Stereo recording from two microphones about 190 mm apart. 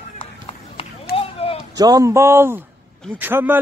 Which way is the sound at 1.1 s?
30° left (ahead or behind).